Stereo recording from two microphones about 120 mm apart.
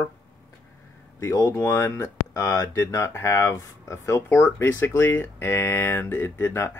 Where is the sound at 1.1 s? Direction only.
25° left (ahead or behind).